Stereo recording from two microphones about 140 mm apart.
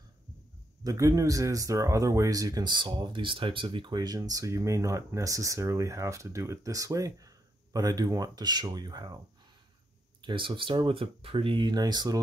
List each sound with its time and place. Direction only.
0.8 s speech: 20° right (ahead or behind)
10.2 s speech: 35° right (ahead or behind)